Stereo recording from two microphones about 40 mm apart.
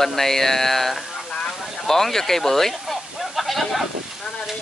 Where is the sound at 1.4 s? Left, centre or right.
Centre.